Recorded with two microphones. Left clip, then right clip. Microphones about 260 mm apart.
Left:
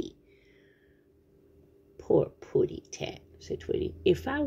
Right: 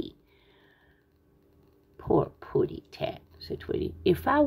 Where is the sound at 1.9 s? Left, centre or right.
Centre.